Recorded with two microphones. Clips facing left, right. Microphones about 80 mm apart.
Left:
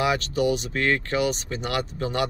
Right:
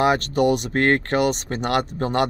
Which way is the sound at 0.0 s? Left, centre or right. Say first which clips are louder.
Right 5 dB; right.